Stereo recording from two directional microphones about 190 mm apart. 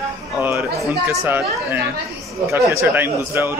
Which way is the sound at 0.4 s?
10° right (ahead or behind).